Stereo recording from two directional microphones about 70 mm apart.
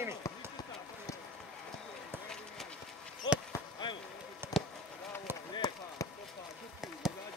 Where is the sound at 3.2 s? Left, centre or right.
Left.